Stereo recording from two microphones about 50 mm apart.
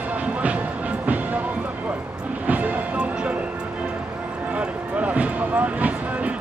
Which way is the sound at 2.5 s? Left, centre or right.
Right.